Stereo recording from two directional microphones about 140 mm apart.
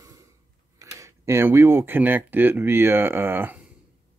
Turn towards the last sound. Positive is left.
turn(degrees=-15)  # may be behind; listen again after turning